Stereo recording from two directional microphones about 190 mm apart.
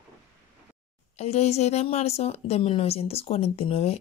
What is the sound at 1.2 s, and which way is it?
A woman's voice, 35° left (ahead or behind).